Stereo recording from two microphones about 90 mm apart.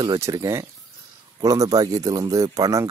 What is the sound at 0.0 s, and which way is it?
Speech, 40° right (ahead or behind).